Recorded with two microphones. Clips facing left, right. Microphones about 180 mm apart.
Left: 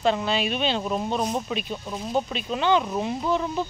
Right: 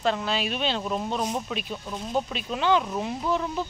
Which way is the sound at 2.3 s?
Centre (ahead or behind).